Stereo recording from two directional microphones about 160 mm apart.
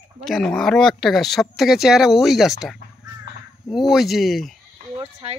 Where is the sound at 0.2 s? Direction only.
Centre (ahead or behind).